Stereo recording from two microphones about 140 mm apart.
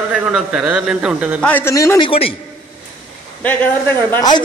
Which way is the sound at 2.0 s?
40° left (ahead or behind).